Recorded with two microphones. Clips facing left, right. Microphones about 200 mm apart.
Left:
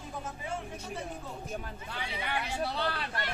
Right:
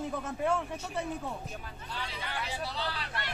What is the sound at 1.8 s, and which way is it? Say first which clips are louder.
Hubbub: left 1 dB; 60° left (ahead or behind).